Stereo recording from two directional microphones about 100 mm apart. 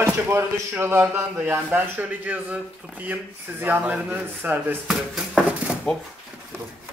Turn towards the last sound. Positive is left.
turn(degrees=5)  # may be behind; listen again after turning